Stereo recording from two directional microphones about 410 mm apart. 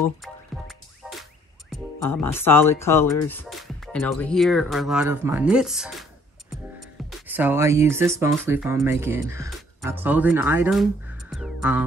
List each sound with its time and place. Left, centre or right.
0.5 s music: centre
1.7 s speech: centre
7.1 s speech: centre